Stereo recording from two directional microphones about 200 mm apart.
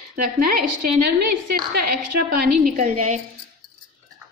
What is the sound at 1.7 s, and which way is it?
A woman's voice, 50° right (ahead or behind).